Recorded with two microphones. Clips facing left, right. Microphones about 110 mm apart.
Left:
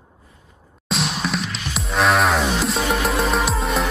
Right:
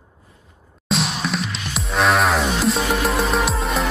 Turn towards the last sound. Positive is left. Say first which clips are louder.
# even
turn(degrees=0)  # may be behind; listen again after turning